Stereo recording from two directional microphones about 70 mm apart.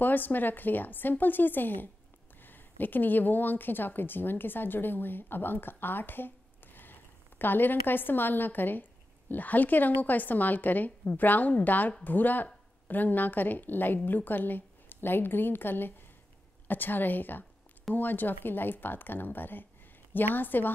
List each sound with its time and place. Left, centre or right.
0.0 s a woman's voice: left